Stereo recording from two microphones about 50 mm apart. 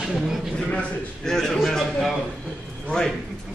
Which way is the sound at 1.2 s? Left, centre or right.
Centre.